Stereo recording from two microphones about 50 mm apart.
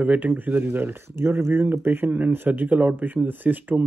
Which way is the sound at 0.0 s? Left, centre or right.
Right.